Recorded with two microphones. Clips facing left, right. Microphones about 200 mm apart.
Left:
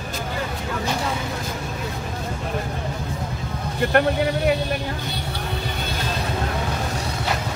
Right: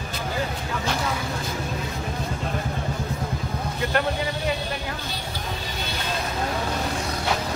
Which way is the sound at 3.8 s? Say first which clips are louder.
Left 6 dB; 55° left (ahead or behind).